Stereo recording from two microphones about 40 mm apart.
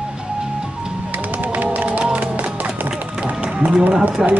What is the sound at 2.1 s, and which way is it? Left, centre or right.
Music, right.